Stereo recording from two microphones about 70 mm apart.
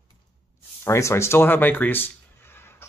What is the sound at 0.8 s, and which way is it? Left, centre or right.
Speech, left.